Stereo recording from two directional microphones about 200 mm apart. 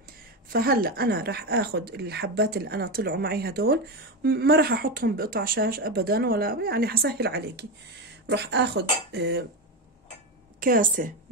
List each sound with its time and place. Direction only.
0.5 s a woman's voice: 50° right (ahead or behind)
10.6 s a woman's voice: 45° right (ahead or behind)